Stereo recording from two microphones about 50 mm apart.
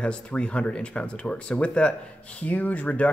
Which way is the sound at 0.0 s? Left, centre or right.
Left.